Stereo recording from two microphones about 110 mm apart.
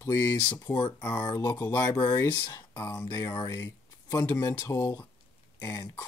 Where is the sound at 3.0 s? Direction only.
40° left (ahead or behind).